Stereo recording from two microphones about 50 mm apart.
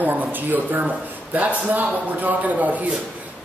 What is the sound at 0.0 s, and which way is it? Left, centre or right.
A man's voice, right.